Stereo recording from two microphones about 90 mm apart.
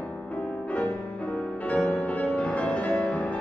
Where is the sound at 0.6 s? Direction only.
15° left (ahead or behind).